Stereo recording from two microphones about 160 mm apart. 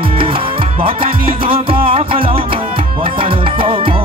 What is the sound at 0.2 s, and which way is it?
Music, 35° right (ahead or behind).